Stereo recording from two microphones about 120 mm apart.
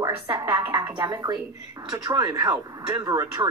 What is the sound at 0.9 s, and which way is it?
Speech, 35° right (ahead or behind).